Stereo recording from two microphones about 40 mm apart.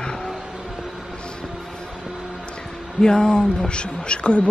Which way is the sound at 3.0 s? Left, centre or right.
Centre.